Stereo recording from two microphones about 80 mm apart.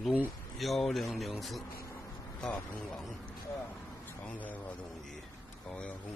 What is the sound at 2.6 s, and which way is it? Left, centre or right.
Speech, centre.